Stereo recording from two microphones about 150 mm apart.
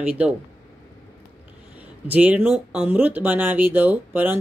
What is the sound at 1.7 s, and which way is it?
Speech, 10° right (ahead or behind).